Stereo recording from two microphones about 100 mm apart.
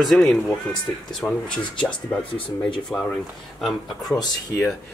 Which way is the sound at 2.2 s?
60° left (ahead or behind).